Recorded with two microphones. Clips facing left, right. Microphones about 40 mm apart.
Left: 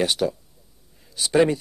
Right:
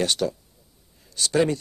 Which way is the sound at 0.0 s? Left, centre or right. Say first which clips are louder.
Left 2 dB; centre.